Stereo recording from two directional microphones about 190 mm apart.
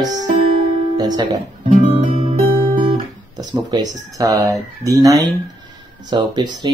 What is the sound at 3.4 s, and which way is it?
Speech, 20° right (ahead or behind).